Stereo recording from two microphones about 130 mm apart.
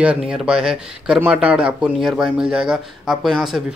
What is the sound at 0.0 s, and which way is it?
Speech, 5° right (ahead or behind).